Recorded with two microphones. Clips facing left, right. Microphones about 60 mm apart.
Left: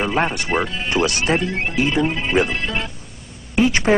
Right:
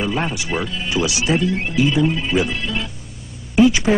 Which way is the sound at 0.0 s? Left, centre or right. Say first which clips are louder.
Left 2 dB; left.